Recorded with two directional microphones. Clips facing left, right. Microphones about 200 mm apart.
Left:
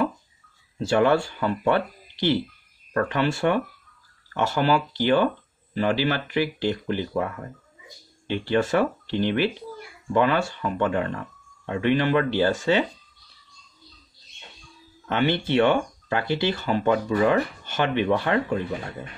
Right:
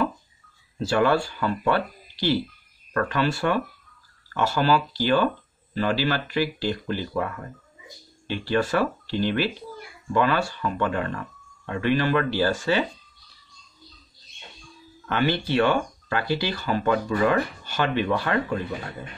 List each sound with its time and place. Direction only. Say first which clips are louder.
0.7 s speech: left 1 dB; 20° left (ahead or behind)
15.0 s speech: left 1 dB; 20° left (ahead or behind)